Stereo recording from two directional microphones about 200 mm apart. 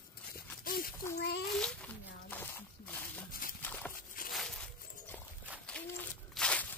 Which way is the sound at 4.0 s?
45° left (ahead or behind).